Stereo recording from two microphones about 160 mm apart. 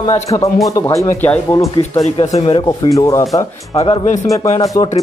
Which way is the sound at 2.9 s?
20° left (ahead or behind).